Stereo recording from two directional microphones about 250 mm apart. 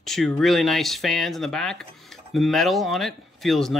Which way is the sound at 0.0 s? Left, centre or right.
Centre.